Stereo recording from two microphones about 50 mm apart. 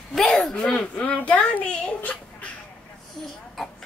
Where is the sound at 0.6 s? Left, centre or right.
Centre.